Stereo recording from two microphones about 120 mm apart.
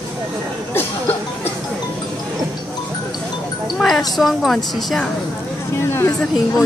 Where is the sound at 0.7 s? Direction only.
15° left (ahead or behind).